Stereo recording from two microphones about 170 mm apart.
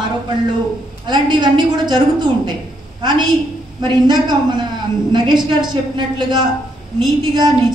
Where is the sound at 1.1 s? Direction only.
25° right (ahead or behind).